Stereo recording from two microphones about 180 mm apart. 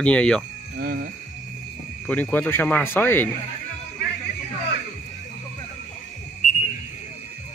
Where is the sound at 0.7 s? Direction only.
60° right (ahead or behind).